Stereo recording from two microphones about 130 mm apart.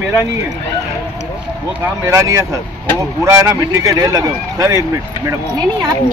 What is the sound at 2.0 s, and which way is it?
Speech, 25° right (ahead or behind).